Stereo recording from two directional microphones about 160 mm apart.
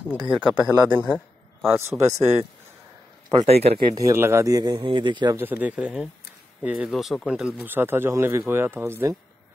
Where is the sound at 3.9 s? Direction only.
20° right (ahead or behind).